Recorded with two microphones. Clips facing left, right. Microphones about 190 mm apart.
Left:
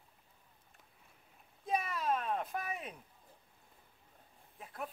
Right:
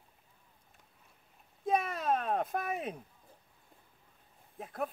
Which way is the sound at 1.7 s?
50° right (ahead or behind).